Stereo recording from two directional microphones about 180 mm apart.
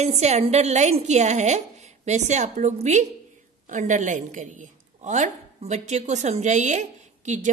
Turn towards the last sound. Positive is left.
turn(degrees=-40)  # may be behind; listen again after turning